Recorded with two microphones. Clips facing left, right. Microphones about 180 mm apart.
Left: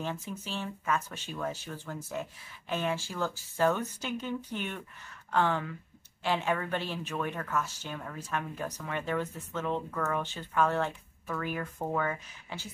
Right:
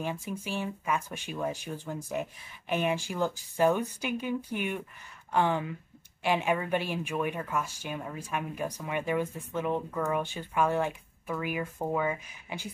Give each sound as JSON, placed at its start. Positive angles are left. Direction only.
{"t": 0.0, "sound": "speech", "side_deg": -10}